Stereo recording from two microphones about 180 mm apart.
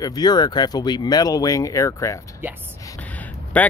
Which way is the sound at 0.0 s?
20° left (ahead or behind).